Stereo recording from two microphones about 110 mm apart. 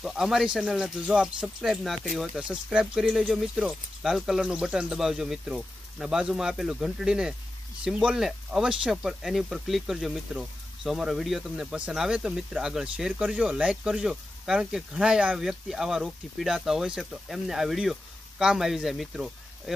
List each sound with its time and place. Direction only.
0.0 s speech: 5° right (ahead or behind)